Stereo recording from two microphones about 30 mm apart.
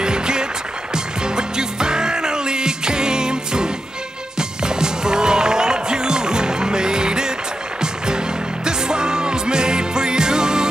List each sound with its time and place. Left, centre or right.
0.0 s music: right